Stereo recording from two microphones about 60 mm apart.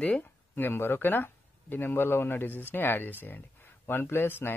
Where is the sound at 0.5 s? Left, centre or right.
Left.